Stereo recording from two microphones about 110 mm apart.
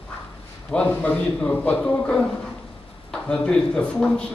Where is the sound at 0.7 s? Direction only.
10° left (ahead or behind).